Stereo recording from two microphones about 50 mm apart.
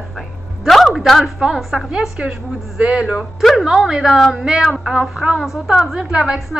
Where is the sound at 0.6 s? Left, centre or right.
Centre.